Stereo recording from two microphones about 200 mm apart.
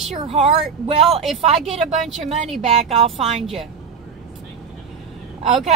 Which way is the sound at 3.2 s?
Centre (ahead or behind).